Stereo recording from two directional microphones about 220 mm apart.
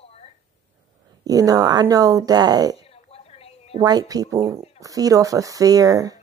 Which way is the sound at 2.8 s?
25° left (ahead or behind).